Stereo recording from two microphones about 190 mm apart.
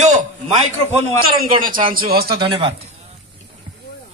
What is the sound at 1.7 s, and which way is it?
Speech, 25° right (ahead or behind).